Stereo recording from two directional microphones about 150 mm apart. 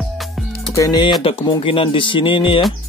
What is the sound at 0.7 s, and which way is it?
Speech, 25° left (ahead or behind).